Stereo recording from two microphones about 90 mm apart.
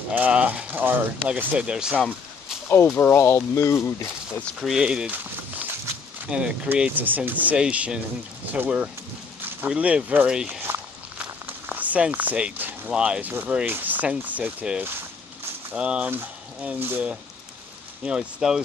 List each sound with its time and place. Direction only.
0.1 s speech: 15° right (ahead or behind)
3.0 s speech: 25° left (ahead or behind)
4.6 s speech: 5° right (ahead or behind)
6.2 s speech: 10° right (ahead or behind)
10.6 s walk: 25° right (ahead or behind)
11.4 s speech: 20° right (ahead or behind)
18.0 s speech: 10° right (ahead or behind)